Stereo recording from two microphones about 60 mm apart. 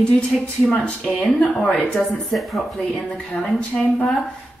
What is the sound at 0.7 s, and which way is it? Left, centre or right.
Speech, centre.